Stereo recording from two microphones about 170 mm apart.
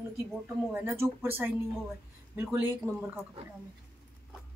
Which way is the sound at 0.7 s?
15° right (ahead or behind).